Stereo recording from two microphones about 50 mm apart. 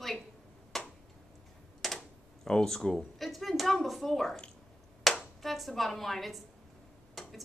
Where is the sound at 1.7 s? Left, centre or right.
Centre.